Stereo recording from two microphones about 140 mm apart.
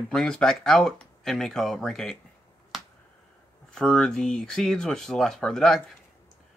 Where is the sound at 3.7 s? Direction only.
5° left (ahead or behind).